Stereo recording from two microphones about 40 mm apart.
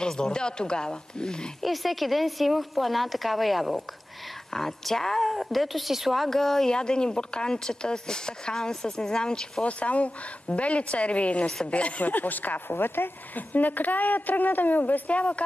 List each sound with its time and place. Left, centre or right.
0.0 s speech: left
1.6 s a woman's voice: centre
6.7 s speech: left
9.7 s speech: left
12.1 s a woman's voice: left
15.1 s speech: left